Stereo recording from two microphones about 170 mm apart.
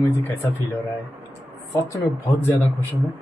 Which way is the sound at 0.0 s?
10° left (ahead or behind).